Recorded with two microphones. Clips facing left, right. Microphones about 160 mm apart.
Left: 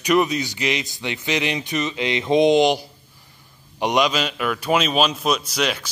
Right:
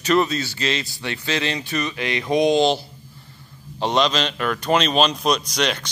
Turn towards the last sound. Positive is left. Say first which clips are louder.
# even
turn(degrees=5)  # may be behind; listen again after turning